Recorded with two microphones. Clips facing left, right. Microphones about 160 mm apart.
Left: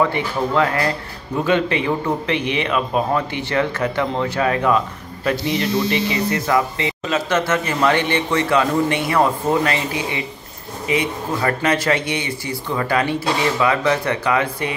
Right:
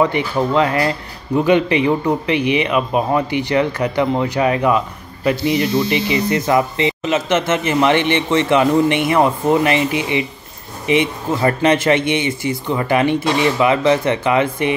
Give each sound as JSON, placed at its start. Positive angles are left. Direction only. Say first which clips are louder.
{"t": 0.0, "sound": "a man's voice", "louder": "right 3 dB", "side_deg": -20}